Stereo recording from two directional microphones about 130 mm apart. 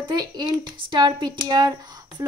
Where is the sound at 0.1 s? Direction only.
30° right (ahead or behind).